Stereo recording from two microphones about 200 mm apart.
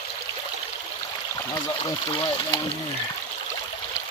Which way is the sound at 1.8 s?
25° left (ahead or behind).